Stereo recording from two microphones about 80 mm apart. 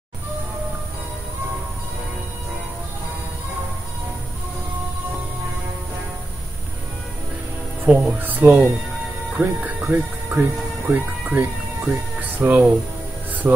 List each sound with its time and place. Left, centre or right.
7.8 s speech: centre